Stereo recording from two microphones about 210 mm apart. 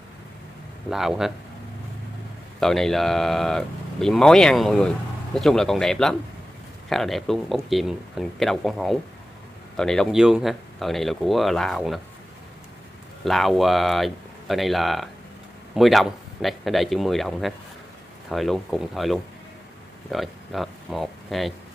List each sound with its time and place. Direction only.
0.8 s speech: centre (ahead or behind)
2.6 s speech: centre (ahead or behind)
13.2 s speech: centre (ahead or behind)